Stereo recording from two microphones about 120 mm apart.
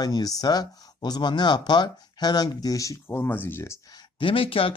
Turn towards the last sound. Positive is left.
turn(degrees=50)  # may be behind; listen again after turning